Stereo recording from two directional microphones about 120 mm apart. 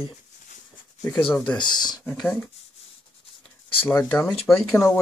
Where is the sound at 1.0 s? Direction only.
15° left (ahead or behind).